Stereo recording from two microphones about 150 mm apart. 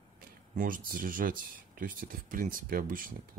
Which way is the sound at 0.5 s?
65° right (ahead or behind).